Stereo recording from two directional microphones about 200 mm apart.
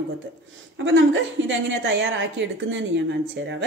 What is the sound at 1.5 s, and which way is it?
A woman's voice, 65° right (ahead or behind).